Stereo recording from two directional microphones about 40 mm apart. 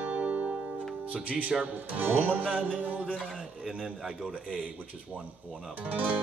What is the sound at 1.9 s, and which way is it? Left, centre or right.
Music, right.